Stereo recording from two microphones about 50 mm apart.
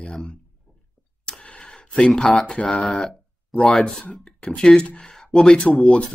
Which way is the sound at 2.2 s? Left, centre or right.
Centre.